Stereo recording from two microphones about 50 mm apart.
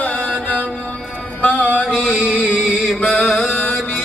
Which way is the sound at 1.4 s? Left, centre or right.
Left.